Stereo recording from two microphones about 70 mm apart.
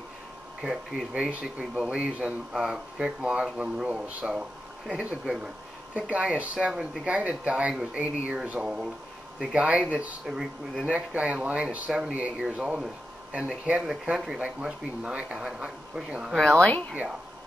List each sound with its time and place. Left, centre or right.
0.6 s speech: centre
10.2 s speech: centre
10.9 s speech: centre